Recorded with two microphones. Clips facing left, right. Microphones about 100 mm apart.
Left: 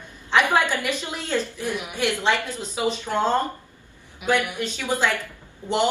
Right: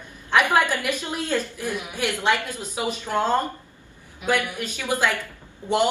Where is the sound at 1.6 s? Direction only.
20° left (ahead or behind).